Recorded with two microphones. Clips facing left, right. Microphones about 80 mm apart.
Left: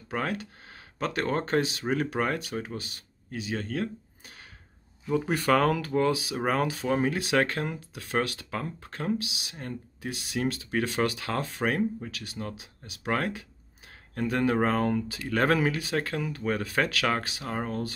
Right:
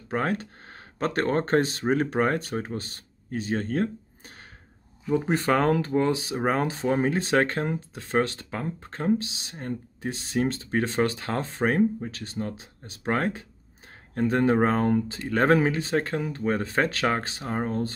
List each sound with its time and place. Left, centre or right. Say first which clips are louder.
0.1 s speech: right 4 dB; right
5.1 s speech: right 1 dB; right